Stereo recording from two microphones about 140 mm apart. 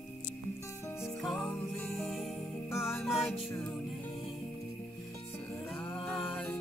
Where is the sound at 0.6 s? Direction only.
20° left (ahead or behind).